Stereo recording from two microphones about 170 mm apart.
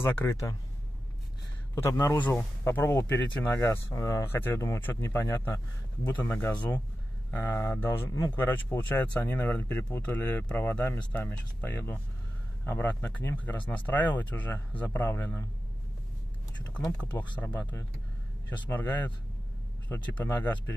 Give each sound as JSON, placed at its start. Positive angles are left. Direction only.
{"t": 0.0, "sound": "speech", "side_deg": 15}
{"t": 1.8, "sound": "speech", "side_deg": 15}
{"t": 16.9, "sound": "speech", "side_deg": 10}